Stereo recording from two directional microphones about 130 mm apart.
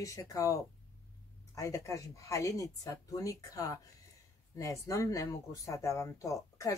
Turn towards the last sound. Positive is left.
turn(degrees=25)  # may be behind; listen again after turning